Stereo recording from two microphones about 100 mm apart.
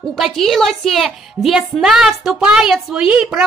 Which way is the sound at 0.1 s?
Centre (ahead or behind).